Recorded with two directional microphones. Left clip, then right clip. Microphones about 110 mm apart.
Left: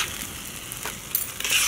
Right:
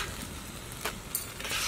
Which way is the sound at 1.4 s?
25° left (ahead or behind).